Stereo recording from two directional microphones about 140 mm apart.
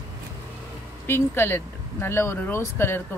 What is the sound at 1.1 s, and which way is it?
Speech, 15° left (ahead or behind).